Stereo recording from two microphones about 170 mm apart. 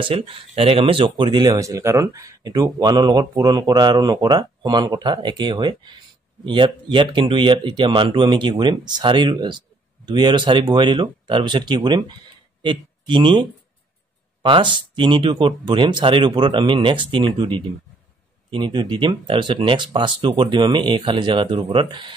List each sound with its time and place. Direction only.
0.0 s speech: 30° right (ahead or behind)